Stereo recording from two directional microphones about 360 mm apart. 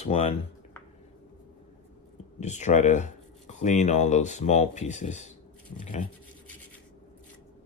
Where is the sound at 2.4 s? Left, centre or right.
Centre.